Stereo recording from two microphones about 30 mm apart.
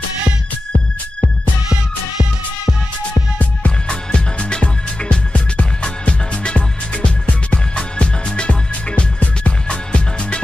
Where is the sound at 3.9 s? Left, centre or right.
Left.